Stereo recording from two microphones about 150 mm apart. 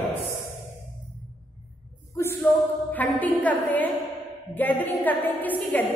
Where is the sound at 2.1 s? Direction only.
15° left (ahead or behind).